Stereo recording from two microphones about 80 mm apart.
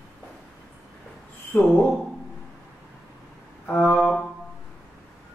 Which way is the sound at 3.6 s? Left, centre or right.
Centre.